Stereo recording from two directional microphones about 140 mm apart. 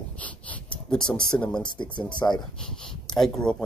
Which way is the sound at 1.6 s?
35° left (ahead or behind).